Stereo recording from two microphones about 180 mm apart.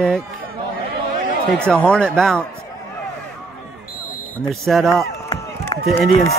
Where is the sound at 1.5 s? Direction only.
5° left (ahead or behind).